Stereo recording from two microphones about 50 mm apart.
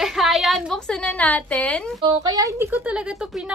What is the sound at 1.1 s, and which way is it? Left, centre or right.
Speech, left.